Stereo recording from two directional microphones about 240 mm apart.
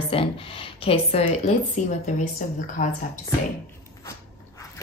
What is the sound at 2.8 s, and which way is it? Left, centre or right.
Speech, left.